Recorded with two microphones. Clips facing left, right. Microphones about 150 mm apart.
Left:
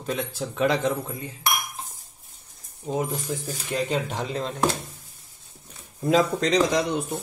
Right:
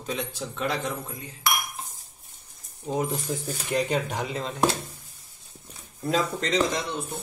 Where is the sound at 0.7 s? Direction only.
20° left (ahead or behind).